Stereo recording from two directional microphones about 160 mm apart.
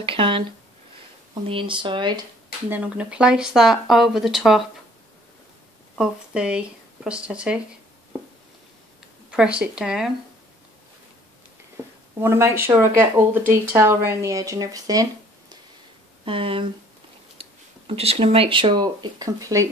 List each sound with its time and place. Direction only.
0.0 s speech: 35° right (ahead or behind)
2.7 s speech: 10° right (ahead or behind)
5.9 s speech: 5° right (ahead or behind)
9.3 s speech: 5° right (ahead or behind)
11.7 s speech: 15° right (ahead or behind)
16.3 s speech: 35° right (ahead or behind)